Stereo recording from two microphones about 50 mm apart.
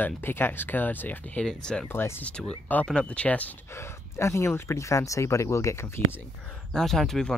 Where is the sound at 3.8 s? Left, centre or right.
Left.